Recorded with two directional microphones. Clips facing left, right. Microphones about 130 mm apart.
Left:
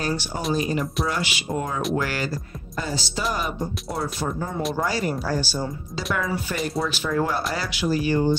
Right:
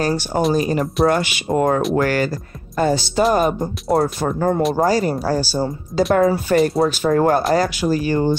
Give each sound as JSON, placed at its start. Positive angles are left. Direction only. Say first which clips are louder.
{"t": 0.0, "sound": "speech", "louder": "right 8 dB", "side_deg": -50}
{"t": 4.7, "sound": "speech", "louder": "right 8 dB", "side_deg": -40}
{"t": 6.5, "sound": "speech", "louder": "right 11 dB", "side_deg": -50}